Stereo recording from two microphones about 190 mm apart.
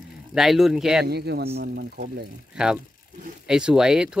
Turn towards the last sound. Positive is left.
turn(degrees=-5)  # may be behind; listen again after turning